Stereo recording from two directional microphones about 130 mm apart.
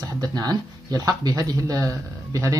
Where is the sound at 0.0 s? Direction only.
30° right (ahead or behind).